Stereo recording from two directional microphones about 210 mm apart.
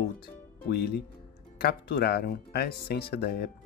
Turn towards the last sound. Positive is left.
turn(degrees=45)  # may be behind; listen again after turning